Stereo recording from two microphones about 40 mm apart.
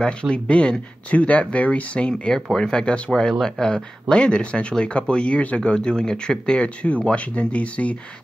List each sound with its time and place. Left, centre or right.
0.0 s speech: left
2.5 s speech: centre; by 7.9 s left